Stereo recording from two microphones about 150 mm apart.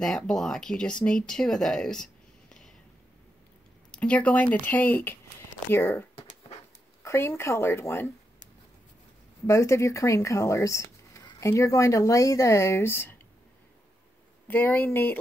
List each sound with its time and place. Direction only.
0.0 s speech: 5° left (ahead or behind)
3.9 s speech: 10° left (ahead or behind)
9.5 s speech: 20° left (ahead or behind)
14.5 s speech: 10° left (ahead or behind)